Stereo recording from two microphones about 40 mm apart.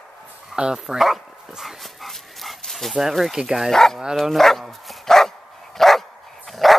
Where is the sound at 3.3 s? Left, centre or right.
Centre.